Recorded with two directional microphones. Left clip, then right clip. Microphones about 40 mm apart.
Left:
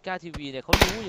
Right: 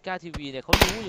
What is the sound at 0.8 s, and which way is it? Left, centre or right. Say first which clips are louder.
Speech: even; right.